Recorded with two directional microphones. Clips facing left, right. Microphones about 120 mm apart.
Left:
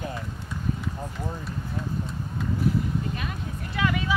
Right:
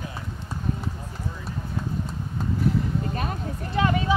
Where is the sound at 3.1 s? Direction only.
40° right (ahead or behind).